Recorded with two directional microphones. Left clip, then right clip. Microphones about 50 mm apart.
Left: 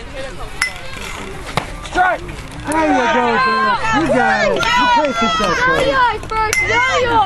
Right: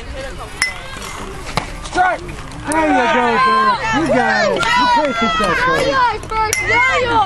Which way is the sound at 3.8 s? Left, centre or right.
Left.